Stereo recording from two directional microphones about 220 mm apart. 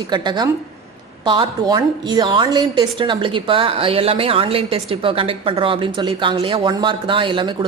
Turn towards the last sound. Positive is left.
turn(degrees=-20)  # may be behind; listen again after turning